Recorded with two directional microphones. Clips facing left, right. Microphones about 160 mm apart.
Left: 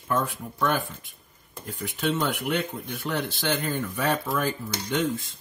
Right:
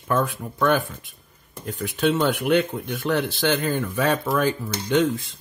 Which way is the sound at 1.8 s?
80° right.